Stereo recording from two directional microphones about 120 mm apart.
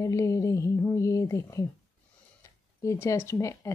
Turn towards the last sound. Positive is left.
turn(degrees=25)  # may be behind; listen again after turning